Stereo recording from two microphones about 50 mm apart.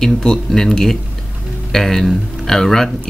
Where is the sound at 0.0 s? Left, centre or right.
Centre.